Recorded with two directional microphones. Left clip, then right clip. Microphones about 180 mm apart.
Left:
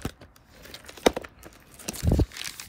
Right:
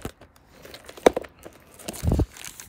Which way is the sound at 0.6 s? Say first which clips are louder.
Right 1 dB; 55° right (ahead or behind).